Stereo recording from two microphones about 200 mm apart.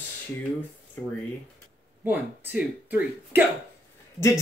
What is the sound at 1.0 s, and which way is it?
Speech, 10° left (ahead or behind).